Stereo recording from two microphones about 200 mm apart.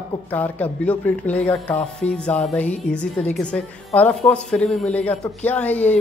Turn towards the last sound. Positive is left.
turn(degrees=10)  # may be behind; listen again after turning